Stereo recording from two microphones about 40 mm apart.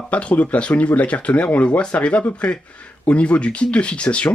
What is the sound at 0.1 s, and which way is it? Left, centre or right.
Speech, left.